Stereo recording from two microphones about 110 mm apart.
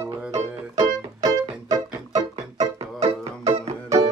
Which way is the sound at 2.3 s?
85° right.